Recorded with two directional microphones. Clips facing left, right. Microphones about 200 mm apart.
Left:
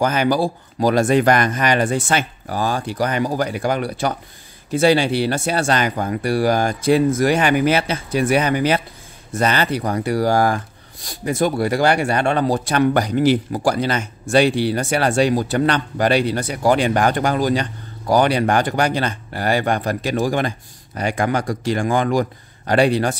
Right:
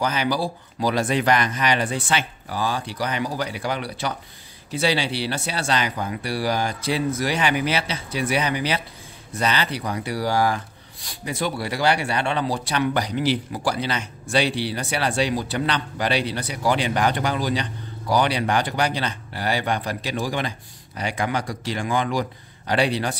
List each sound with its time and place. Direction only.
0.0 s speech: 50° left (ahead or behind)